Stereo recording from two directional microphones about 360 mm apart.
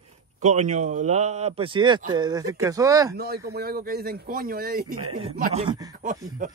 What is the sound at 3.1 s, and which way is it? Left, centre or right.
Speech, right.